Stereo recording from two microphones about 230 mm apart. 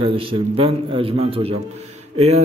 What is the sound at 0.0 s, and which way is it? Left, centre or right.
A man's voice, right.